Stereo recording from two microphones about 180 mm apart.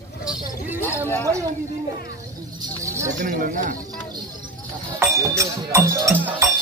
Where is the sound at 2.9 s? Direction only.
15° right (ahead or behind).